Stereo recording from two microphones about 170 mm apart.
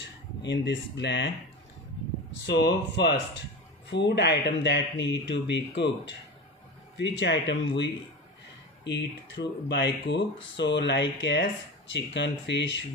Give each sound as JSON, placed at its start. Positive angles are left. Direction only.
{"t": 0.4, "sound": "speech", "side_deg": 90}
{"t": 2.4, "sound": "a man's voice", "side_deg": 80}
{"t": 3.9, "sound": "speech", "side_deg": 90}